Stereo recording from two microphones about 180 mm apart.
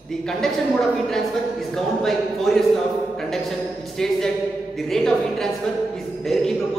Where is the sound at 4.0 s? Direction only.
Centre (ahead or behind).